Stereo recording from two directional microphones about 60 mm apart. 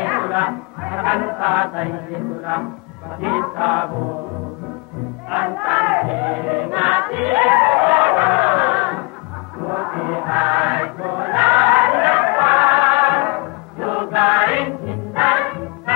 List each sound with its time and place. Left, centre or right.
0.0 s chant: right
3.2 s music: right
5.3 s music: right
9.6 s chant: right